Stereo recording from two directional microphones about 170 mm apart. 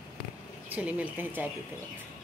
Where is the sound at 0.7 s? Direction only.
10° right (ahead or behind).